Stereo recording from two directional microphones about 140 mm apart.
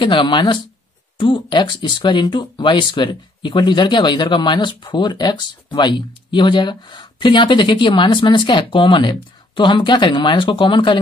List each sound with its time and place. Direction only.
0.0 s speech: 35° left (ahead or behind)